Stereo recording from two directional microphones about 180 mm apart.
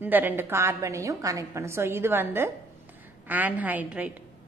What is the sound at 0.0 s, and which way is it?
A woman's voice, 10° right (ahead or behind).